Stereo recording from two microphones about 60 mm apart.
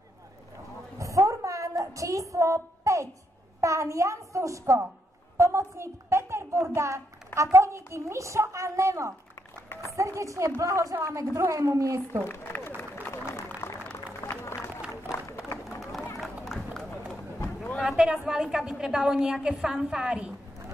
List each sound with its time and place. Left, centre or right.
0.9 s a sound: right
3.6 s a child's voice: right
5.4 s a sound: right
6.7 s a woman's voice: right
12.3 s speech: left
13.0 s a sound: left
14.4 s run: left
15.8 s run: centre
17.8 s a woman's voice: centre